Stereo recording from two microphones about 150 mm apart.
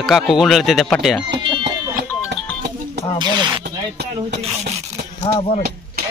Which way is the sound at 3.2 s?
30° right (ahead or behind).